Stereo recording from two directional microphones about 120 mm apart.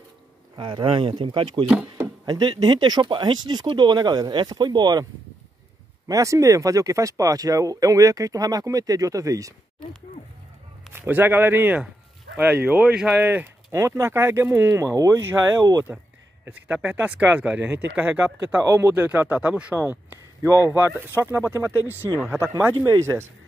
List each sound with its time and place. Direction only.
0.6 s speech: 40° right (ahead or behind)
6.0 s speech: 30° right (ahead or behind)
10.9 s a man's voice: 15° right (ahead or behind)
13.3 s speech: 20° right (ahead or behind)
16.4 s speech: 15° right (ahead or behind)
22.8 s speech: 25° right (ahead or behind)